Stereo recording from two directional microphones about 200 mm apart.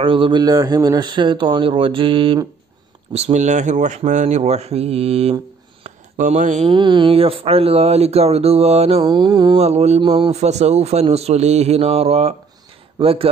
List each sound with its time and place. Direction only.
0.0 s a man's voice: 25° right (ahead or behind)
5.9 s mantra: 40° right (ahead or behind)
6.7 s a man's voice: 25° right (ahead or behind)